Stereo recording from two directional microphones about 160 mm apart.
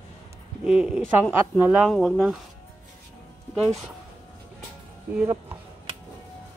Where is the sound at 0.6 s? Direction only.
5° right (ahead or behind).